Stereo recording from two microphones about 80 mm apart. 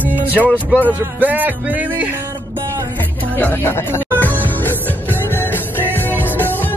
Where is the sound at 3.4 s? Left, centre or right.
Left.